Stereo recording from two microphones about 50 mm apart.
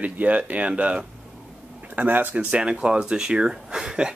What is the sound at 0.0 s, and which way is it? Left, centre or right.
Speech, right.